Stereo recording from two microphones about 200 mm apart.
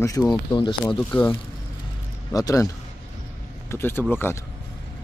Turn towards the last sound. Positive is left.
turn(degrees=10)  # may be behind; listen again after turning